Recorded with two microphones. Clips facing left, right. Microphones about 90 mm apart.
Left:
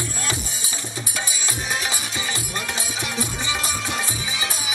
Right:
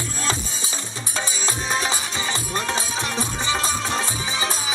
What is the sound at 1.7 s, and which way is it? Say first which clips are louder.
Music: right 3 dB; 25° right (ahead or behind).